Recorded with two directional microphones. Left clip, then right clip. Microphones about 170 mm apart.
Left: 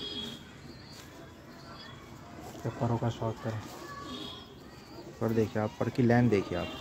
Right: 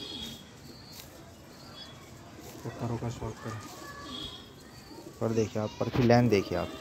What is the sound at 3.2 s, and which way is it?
Speech, 35° left (ahead or behind).